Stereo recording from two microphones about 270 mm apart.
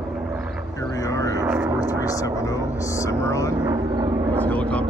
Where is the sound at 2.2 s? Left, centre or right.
Centre.